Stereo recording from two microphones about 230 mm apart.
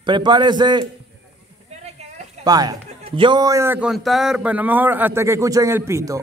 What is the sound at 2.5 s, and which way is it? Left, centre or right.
A man's voice, centre.